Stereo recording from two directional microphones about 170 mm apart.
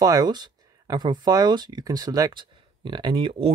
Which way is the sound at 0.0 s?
25° right (ahead or behind).